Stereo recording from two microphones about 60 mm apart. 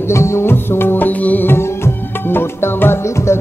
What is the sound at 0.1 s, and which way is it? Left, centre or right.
Music, left.